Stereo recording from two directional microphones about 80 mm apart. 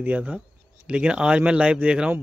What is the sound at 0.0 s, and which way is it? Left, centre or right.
Speech, centre.